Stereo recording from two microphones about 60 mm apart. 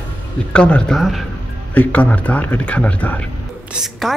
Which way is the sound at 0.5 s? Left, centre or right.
Centre.